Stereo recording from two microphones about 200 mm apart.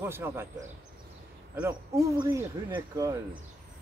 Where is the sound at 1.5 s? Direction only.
15° right (ahead or behind).